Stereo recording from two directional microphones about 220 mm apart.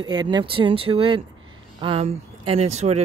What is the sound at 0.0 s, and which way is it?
Speech, 20° right (ahead or behind).